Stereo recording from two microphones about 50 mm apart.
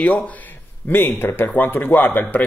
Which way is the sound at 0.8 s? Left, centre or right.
Left.